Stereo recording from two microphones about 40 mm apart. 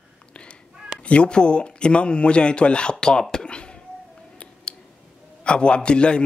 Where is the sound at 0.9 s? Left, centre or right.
Left.